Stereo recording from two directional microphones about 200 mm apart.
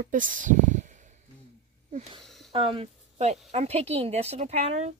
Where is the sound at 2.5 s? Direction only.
25° right (ahead or behind).